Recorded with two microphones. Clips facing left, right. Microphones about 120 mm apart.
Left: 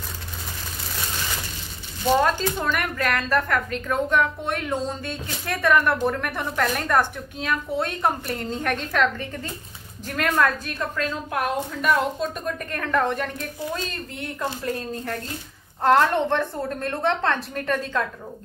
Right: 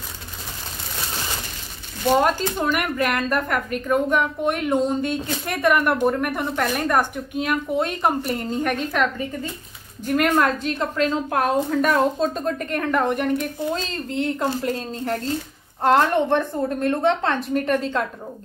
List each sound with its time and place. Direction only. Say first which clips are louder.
2.1 s speech: right 2 dB; 15° right (ahead or behind)
10.3 s speech: right 2 dB; 25° right (ahead or behind)
11.3 s a woman's voice: right 5 dB; 40° right (ahead or behind)
12.7 s speech: right 1 dB; 20° right (ahead or behind)
15.8 s speech: right 1 dB; 15° right (ahead or behind)